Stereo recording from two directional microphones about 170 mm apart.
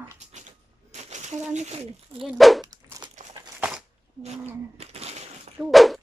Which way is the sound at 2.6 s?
20° right (ahead or behind).